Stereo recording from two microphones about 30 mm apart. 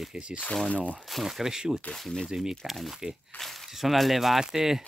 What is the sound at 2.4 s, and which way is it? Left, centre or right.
Speech, centre.